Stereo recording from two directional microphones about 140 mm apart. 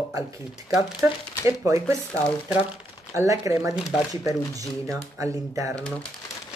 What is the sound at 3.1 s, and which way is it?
Speech, 25° right (ahead or behind).